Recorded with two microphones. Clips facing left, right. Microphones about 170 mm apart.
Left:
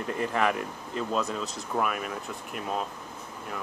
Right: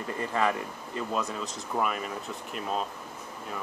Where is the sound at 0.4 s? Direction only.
15° left (ahead or behind).